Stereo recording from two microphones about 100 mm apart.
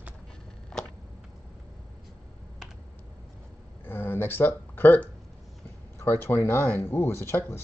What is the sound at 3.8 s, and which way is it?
Speech, 20° left (ahead or behind).